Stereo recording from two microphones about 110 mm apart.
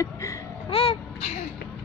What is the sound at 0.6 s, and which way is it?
Speech, 60° left (ahead or behind).